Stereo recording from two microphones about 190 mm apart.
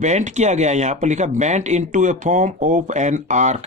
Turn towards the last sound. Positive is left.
turn(degrees=-40)  # may be behind; listen again after turning